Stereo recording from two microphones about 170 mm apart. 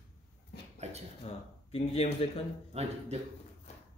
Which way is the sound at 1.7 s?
40° left (ahead or behind).